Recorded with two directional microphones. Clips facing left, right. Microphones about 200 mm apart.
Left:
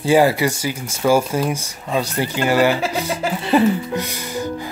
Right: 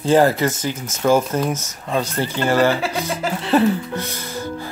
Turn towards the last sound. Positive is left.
turn(degrees=15)  # may be behind; listen again after turning